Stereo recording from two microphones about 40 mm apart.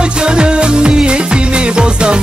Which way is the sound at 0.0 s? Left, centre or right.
Right.